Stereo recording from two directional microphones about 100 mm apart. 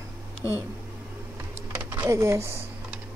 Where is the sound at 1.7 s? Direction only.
20° right (ahead or behind).